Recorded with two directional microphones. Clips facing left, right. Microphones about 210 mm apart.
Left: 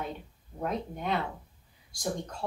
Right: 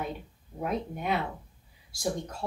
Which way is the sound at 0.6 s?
10° right (ahead or behind).